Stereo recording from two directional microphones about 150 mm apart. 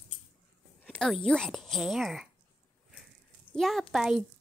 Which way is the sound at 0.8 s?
5° left (ahead or behind).